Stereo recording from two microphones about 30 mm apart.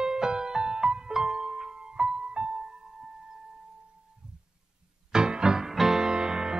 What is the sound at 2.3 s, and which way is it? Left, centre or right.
Music, right.